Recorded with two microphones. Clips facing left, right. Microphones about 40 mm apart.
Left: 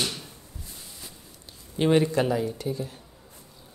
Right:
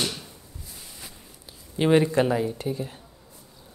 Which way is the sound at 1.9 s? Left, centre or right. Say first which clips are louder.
Right 2 dB; centre.